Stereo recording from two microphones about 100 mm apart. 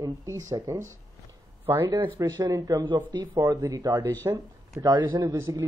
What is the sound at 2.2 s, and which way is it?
Speech, 35° right (ahead or behind).